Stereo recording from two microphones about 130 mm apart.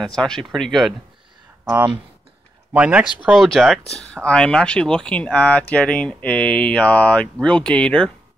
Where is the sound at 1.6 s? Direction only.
15° right (ahead or behind).